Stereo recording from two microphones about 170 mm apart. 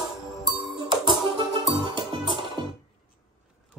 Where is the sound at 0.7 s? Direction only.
30° right (ahead or behind).